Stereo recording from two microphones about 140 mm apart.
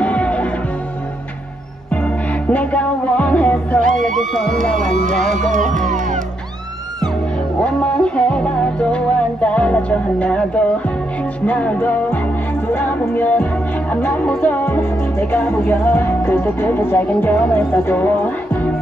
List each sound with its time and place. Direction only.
0.0 s music: 10° left (ahead or behind)
2.5 s music: 10° left (ahead or behind)
3.8 s music: 70° right (ahead or behind)
4.1 s speech: centre (ahead or behind)
4.7 s music: 70° right (ahead or behind)
7.6 s music: 5° left (ahead or behind)